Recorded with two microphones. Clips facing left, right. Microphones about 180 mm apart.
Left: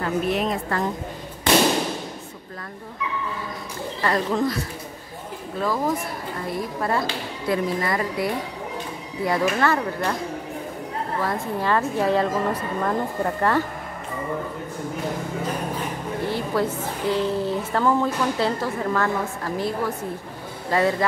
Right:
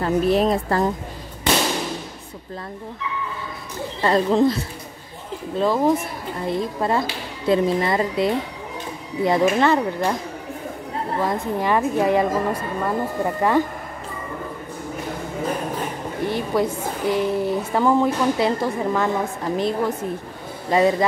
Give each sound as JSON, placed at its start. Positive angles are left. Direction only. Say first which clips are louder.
{"t": 0.0, "sound": "a woman's voice", "louder": "right 5 dB", "side_deg": -35}
{"t": 4.0, "sound": "speech", "louder": "right 5 dB", "side_deg": -25}
{"t": 5.6, "sound": "speech", "louder": "right 5 dB", "side_deg": -25}
{"t": 11.1, "sound": "a woman's voice", "louder": "right 3 dB", "side_deg": -15}
{"t": 16.3, "sound": "a woman's voice", "louder": "right 3 dB", "side_deg": -15}